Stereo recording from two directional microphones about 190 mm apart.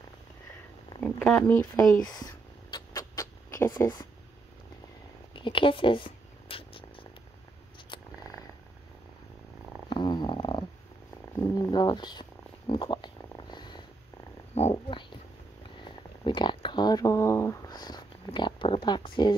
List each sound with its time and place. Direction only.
1.0 s speech: 10° left (ahead or behind)
2.0 s rodents: 20° left (ahead or behind)
5.3 s purr: 25° left (ahead or behind)
9.8 s purr: 25° left (ahead or behind)
14.5 s purr: 35° left (ahead or behind)
15.8 s a sound: 25° left (ahead or behind)